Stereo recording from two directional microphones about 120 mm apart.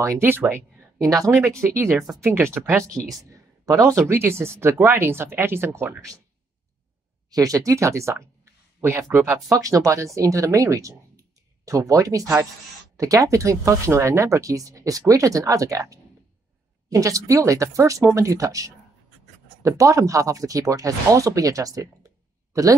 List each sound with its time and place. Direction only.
0.0 s speech: 20° right (ahead or behind)
7.2 s speech: 30° right (ahead or behind)